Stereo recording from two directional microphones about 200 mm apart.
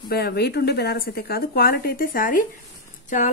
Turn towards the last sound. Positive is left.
turn(degrees=40)  # may be behind; listen again after turning